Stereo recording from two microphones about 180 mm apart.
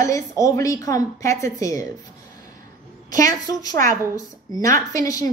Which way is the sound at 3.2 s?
20° left (ahead or behind).